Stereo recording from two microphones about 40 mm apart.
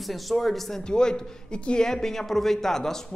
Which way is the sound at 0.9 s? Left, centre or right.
Centre.